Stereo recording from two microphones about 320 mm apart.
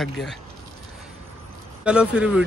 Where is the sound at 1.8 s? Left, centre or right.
Centre.